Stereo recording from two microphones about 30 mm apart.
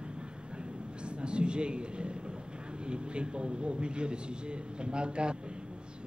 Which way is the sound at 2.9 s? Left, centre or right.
Right.